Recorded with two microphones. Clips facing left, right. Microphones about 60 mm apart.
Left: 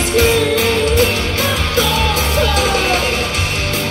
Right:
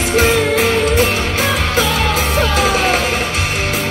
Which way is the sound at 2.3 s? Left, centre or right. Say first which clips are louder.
Right 1 dB; centre.